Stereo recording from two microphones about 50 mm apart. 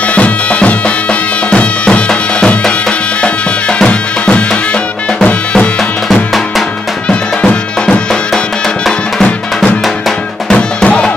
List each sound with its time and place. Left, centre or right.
0.1 s bagpipes: left
1.5 s music: left
7.1 s music: left
10.5 s music: centre